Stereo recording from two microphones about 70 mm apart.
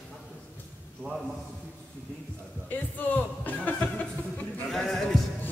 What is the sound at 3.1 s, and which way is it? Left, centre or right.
Music, left.